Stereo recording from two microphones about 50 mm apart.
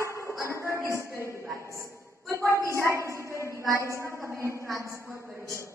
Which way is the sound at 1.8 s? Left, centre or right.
Right.